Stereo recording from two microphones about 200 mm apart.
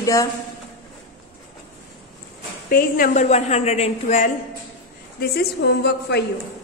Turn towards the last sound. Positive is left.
turn(degrees=55)  # may be behind; listen again after turning